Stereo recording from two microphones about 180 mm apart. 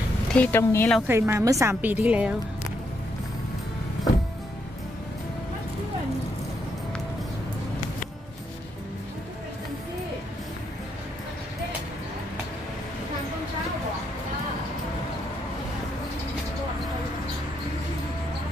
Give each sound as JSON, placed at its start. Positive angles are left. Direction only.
{"t": 0.3, "sound": "speech", "side_deg": 10}
{"t": 1.0, "sound": "a woman's voice", "side_deg": -15}